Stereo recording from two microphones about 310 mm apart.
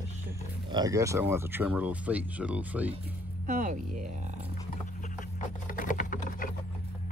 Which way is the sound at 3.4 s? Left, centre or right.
Right.